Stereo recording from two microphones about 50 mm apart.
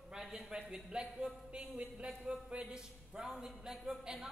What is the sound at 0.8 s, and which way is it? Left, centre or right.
A woman's voice, centre.